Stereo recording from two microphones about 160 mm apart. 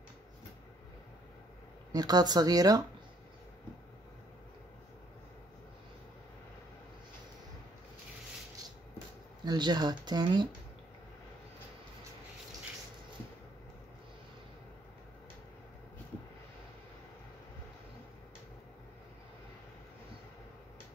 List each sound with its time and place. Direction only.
1.9 s speech: 25° right (ahead or behind)
9.4 s speech: 25° right (ahead or behind)